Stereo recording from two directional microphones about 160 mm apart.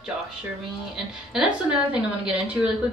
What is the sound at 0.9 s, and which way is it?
A woman's voice, 5° right (ahead or behind).